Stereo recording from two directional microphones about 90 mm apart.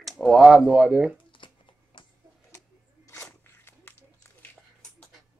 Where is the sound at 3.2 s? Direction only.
25° left (ahead or behind).